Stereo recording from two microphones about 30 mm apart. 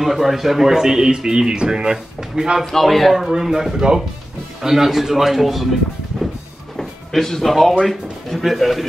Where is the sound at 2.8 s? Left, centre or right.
Centre.